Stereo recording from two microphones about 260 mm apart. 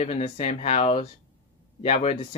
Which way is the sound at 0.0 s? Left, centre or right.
Left.